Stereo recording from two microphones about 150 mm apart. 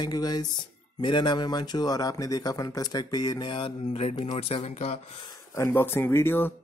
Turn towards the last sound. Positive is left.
turn(degrees=15)  # may be behind; listen again after turning